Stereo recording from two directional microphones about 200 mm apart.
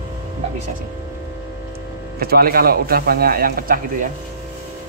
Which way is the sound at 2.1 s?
50° right (ahead or behind).